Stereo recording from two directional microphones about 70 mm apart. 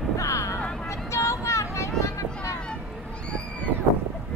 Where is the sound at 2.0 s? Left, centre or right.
Left.